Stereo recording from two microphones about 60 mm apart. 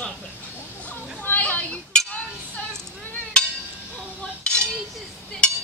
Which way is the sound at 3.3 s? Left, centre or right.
Centre.